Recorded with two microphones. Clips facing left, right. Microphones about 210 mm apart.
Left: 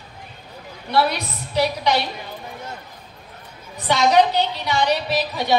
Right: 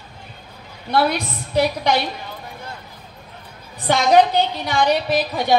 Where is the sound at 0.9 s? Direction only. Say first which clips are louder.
Right 1 dB; 50° right (ahead or behind).